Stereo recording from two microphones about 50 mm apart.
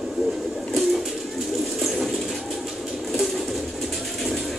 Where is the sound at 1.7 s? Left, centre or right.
Centre.